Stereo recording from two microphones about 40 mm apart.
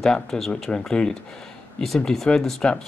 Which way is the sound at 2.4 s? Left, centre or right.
Centre.